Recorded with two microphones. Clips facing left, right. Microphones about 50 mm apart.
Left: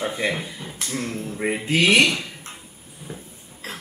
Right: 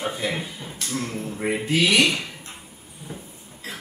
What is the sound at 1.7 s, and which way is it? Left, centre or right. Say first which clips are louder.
Speech: left 3 dB; left.